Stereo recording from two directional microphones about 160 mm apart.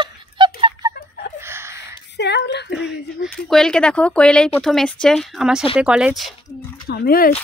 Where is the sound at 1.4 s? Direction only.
15° right (ahead or behind).